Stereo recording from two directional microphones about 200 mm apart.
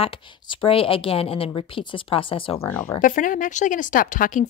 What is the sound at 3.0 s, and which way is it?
A woman's voice, 40° left (ahead or behind).